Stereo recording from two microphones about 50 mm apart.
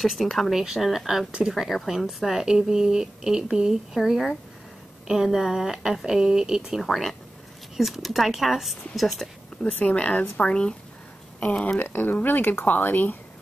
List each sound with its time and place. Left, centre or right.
0.0 s a woman's voice: centre
6.8 s speech: centre
9.6 s speech: left
11.8 s speech: left